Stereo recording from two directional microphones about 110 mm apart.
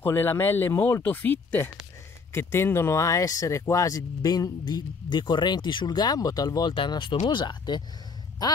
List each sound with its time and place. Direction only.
0.0 s speech: 20° left (ahead or behind); by 6.7 s 35° left (ahead or behind)
6.7 s speech: 50° left (ahead or behind)